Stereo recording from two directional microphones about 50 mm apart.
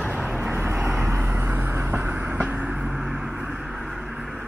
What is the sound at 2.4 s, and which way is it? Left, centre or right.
Vehicle, right.